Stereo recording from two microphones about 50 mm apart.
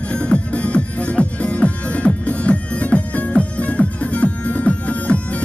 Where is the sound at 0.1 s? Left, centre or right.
Left.